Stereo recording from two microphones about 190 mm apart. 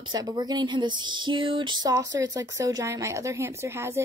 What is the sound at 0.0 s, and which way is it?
Speech, 20° right (ahead or behind).